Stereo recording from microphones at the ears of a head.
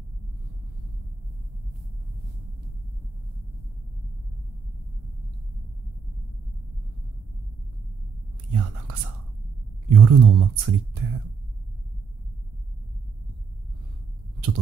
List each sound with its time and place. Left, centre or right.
8.5 s whispering: right
9.8 s speech: right